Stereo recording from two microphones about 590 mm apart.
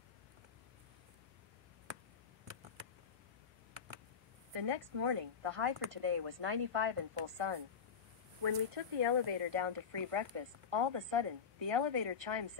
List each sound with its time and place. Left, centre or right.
4.6 s speech: right